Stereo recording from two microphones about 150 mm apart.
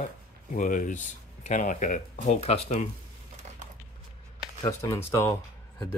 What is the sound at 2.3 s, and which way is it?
Speech, 45° left (ahead or behind).